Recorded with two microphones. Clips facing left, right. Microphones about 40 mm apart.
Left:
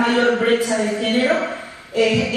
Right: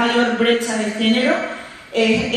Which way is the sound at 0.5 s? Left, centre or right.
Right.